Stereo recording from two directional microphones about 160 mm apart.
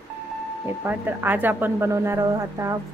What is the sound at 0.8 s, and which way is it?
A woman's voice, 10° right (ahead or behind).